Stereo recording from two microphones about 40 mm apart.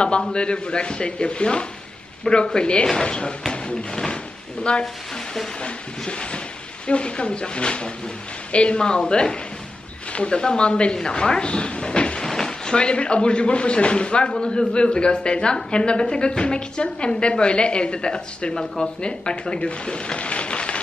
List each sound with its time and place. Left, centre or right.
0.0 s a woman's voice: left
12.2 s a woman's voice: centre
18.5 s speech: centre
18.9 s a woman's voice: left